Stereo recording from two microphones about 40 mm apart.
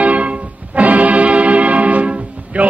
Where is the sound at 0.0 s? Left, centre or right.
Right.